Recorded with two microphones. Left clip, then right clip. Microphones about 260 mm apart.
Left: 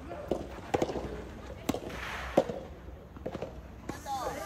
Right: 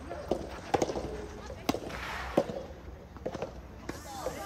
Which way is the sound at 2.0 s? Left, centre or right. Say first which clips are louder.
Left 4 dB; centre.